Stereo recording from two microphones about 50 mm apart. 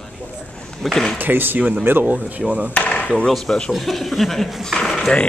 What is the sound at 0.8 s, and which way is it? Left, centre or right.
Speech, centre.